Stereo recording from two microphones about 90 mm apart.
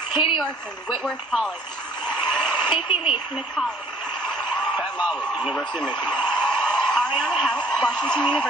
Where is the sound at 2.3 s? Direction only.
10° left (ahead or behind).